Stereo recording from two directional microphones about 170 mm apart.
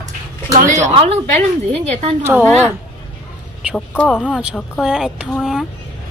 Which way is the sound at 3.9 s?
10° left (ahead or behind).